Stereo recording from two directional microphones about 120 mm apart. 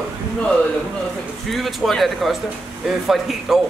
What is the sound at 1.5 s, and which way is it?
Speech, centre (ahead or behind).